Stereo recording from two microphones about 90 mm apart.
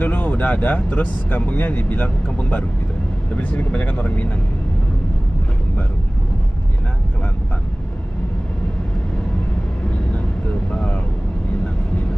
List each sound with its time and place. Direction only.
0.0 s speech: 20° left (ahead or behind)
10.7 s vehicle: 10° left (ahead or behind)